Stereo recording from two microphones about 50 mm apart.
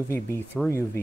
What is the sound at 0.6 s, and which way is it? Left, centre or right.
Speech, left.